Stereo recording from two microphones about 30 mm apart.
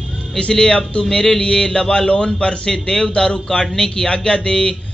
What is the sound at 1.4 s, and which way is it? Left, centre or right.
Speech, left.